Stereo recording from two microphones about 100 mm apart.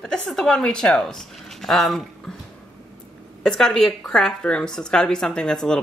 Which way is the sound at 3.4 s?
5° left (ahead or behind).